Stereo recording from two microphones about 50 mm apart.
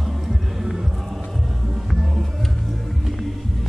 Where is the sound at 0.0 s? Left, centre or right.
Centre.